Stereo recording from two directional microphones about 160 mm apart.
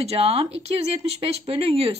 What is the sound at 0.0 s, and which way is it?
Speech, 40° right (ahead or behind).